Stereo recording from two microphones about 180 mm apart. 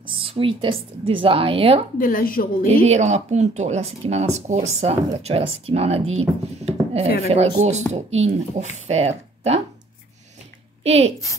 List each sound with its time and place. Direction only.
0.0 s speech: 30° right (ahead or behind)
2.0 s a woman's voice: 50° left (ahead or behind)
2.6 s speech: 35° right (ahead or behind)
10.8 s a woman's voice: 35° right (ahead or behind)